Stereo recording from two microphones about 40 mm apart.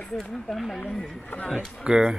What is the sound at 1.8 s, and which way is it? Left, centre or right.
Speech, centre.